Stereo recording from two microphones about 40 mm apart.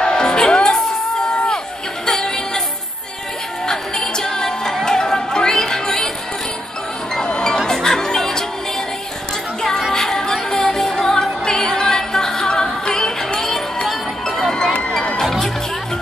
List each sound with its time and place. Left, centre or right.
0.0 s music: centre
2.0 s music: centre
3.6 s music: centre
7.2 s music: centre
9.6 s music: centre
13.8 s music: centre
14.7 s music: left
15.2 s music: centre